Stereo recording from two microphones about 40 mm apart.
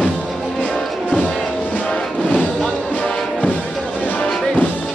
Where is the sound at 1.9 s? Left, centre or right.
Left.